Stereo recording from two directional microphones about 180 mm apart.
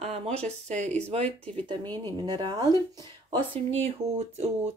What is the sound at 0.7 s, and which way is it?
Speech, 40° right (ahead or behind).